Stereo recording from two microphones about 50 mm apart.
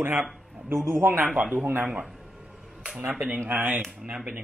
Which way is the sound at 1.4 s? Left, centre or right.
Right.